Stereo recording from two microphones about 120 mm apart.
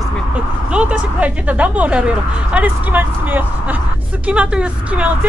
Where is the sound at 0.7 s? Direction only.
10° right (ahead or behind).